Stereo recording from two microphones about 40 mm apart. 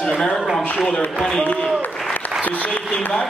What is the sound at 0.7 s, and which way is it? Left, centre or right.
Speech, centre.